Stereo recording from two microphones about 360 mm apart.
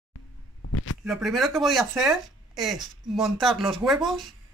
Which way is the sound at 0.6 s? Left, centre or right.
Left.